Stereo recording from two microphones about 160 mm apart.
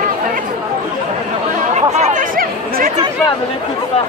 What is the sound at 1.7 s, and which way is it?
Chatter, 45° right (ahead or behind).